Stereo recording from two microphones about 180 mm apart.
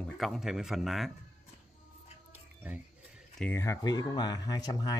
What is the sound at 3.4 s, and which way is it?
Speech, 15° left (ahead or behind).